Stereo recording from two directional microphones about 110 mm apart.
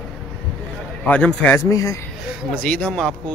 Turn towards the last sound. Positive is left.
turn(degrees=5)  # may be behind; listen again after turning